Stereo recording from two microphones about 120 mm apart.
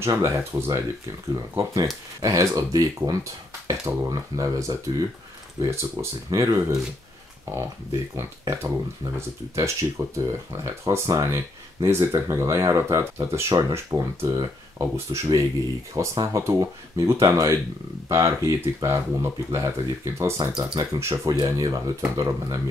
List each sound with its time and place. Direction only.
0.0 s speech: 25° right (ahead or behind)
20.3 s speech: 35° right (ahead or behind)